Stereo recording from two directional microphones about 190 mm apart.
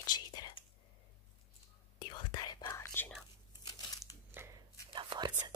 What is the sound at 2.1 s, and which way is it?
Whispering, 20° left (ahead or behind).